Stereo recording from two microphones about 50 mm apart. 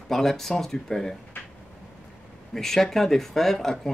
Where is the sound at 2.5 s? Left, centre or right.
Centre.